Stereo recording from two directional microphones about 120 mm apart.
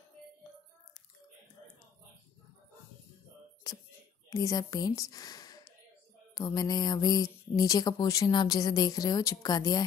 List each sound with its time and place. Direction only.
4.3 s speech: 30° left (ahead or behind)